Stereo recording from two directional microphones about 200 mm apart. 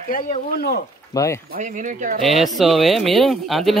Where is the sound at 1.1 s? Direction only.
15° left (ahead or behind).